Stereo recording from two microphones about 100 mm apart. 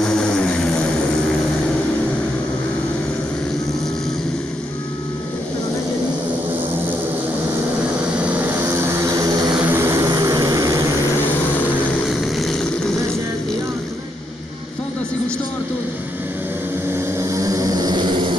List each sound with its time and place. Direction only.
0.0 s vehicle: 5° left (ahead or behind)
9.7 s vehicle: 25° right (ahead or behind)
9.9 s vehicle: 35° right (ahead or behind)
12.1 s vehicle: centre (ahead or behind)
16.9 s vehicle: 30° right (ahead or behind); by 18.3 s 50° right (ahead or behind)